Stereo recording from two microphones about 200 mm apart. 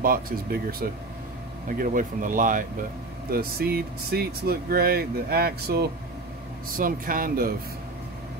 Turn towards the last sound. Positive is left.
turn(degrees=-45)  # may be behind; listen again after turning